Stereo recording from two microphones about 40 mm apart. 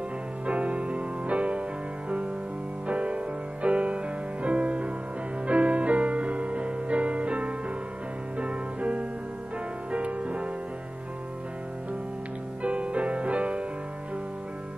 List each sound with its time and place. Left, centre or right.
0.5 s music: right
2.9 s music: right
12.6 s music: right